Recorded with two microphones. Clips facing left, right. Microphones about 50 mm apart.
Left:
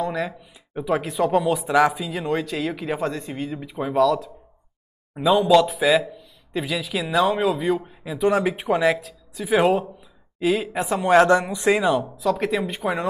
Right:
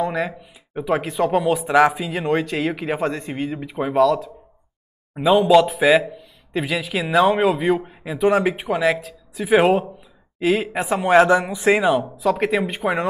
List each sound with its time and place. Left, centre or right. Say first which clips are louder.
0.0 s speech: right 3 dB; right
8.3 s speech: right 3 dB; centre
8.5 s speech: left 1 dB; centre
8.9 s speech: right 3 dB; right
11.1 s speech: right 2 dB; centre
11.7 s speech: right 3 dB; right